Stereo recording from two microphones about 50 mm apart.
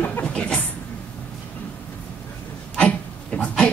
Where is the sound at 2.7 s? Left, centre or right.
Left.